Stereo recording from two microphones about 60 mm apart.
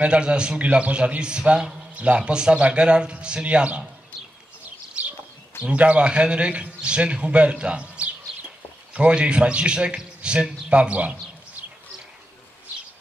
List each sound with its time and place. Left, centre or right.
0.0 s a man's voice: centre
5.0 s bird: centre
5.6 s a man's voice: centre